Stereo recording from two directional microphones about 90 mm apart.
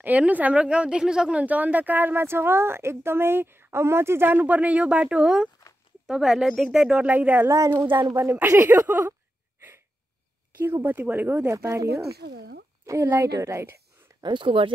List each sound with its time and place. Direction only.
0.0 s speech: 15° right (ahead or behind)
7.4 s a woman's voice: 40° right (ahead or behind)
7.7 s speech: 20° right (ahead or behind)
10.6 s a woman's voice: 25° right (ahead or behind)
14.2 s speech: 60° right (ahead or behind)